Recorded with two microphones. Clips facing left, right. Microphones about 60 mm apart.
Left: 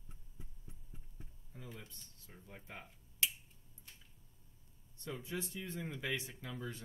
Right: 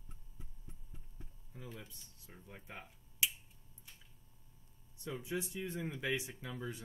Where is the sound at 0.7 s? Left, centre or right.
Centre.